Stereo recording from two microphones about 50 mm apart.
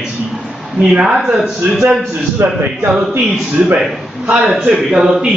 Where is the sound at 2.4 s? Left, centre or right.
Right.